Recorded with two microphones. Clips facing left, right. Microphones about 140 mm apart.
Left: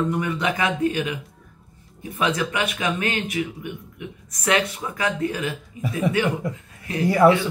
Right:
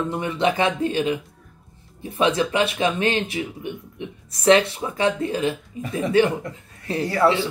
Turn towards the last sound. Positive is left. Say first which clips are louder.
# left 3 dB
turn(degrees=15)  # may be behind; listen again after turning